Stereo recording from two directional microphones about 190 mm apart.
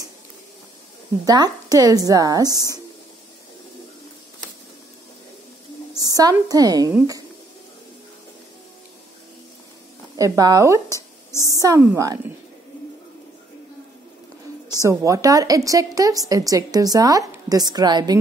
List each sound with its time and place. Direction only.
1.2 s a woman's voice: 20° right (ahead or behind)
5.9 s a woman's voice: 20° right (ahead or behind)
10.1 s a woman's voice: 20° right (ahead or behind)
10.9 s a sound: 15° left (ahead or behind)
11.4 s a woman's voice: 15° right (ahead or behind)
14.8 s a woman's voice: 15° right (ahead or behind)